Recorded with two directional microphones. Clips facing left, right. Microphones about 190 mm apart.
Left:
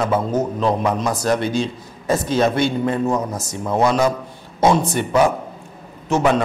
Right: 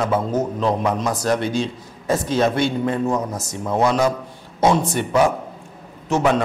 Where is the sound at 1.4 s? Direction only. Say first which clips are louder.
Left 1 dB; 10° left (ahead or behind).